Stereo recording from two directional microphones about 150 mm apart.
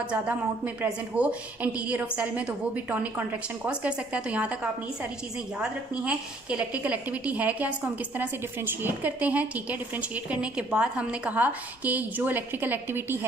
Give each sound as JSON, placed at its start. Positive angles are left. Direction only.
{"t": 1.1, "sound": "a woman's voice", "side_deg": -10}
{"t": 5.6, "sound": "a woman's voice", "side_deg": -5}